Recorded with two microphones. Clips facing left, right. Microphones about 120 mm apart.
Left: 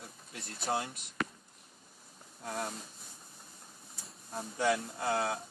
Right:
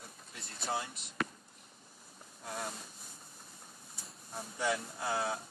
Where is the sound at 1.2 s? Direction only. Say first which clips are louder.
Even; centre (ahead or behind).